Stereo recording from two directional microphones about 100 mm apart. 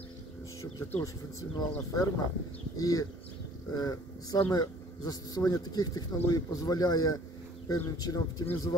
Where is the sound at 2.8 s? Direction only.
40° left (ahead or behind).